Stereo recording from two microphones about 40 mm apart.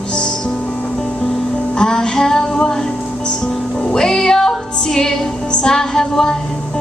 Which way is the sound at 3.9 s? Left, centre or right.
Centre.